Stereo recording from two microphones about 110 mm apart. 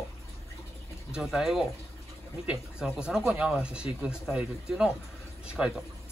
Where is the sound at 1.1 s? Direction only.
5° right (ahead or behind).